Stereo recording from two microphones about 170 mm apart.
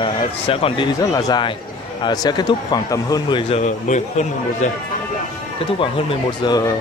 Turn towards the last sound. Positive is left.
turn(degrees=20)  # may be behind; listen again after turning